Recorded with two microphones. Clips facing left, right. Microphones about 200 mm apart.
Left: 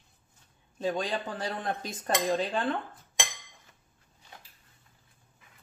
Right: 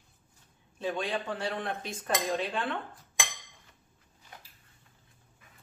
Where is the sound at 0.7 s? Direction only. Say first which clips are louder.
Left 2 dB; 40° left (ahead or behind).